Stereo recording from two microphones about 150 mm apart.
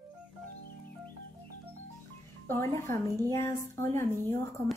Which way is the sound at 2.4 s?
15° left (ahead or behind).